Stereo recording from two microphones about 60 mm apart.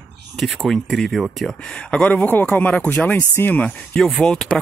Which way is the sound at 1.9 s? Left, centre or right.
Left.